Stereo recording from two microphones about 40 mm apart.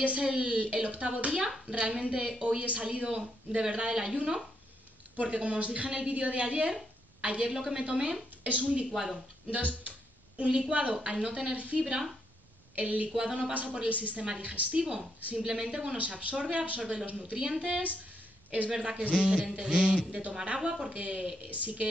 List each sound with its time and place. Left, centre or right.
0.0 s a woman's voice: right
5.1 s a woman's voice: right
7.5 s speech: centre
7.8 s a woman's voice: right
8.9 s speech: centre
9.5 s a sound: right
10.7 s a woman's voice: right
11.5 s speech: right
11.8 s speech: centre
13.1 s a woman's voice: right
13.5 s speech: right
14.8 s a woman's voice: right
16.0 s a woman's voice: right
21.5 s speech: right